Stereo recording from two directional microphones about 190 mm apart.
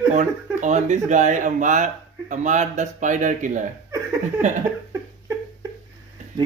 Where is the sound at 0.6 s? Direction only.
40° right (ahead or behind).